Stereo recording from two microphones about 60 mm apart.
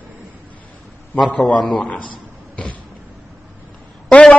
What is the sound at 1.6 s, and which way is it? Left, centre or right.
Speech, centre.